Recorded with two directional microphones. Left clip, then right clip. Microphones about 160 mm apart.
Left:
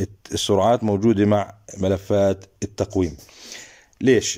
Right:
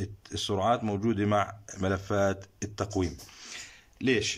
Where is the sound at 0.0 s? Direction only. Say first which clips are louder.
Left 10 dB; 40° left (ahead or behind).